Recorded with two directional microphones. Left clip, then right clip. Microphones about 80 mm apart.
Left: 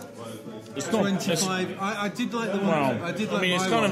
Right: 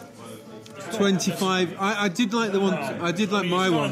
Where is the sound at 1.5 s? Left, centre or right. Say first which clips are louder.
Right 5 dB; right.